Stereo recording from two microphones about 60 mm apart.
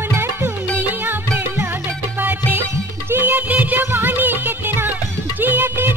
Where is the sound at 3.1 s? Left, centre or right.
Right.